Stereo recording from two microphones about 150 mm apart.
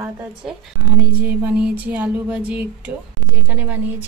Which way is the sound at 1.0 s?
10° right (ahead or behind).